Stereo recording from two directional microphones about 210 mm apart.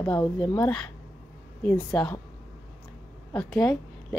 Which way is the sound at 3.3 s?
5° left (ahead or behind).